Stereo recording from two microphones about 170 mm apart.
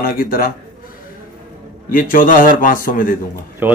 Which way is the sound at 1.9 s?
55° left (ahead or behind).